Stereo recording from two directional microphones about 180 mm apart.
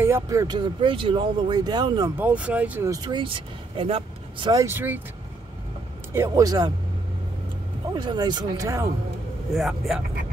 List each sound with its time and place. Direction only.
0.0 s speech: 15° right (ahead or behind)
2.1 s speech: 10° right (ahead or behind)
2.9 s speech: 25° right (ahead or behind)
4.5 s speech: 15° right (ahead or behind)
6.1 s speech: 15° right (ahead or behind)
7.9 s speech: 25° right (ahead or behind)
9.5 s speech: centre (ahead or behind)